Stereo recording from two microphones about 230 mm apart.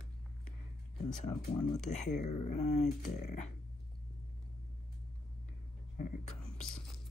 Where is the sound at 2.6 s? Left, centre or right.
Left.